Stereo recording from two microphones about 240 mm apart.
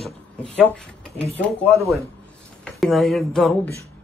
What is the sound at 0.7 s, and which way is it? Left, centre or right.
Speech, centre.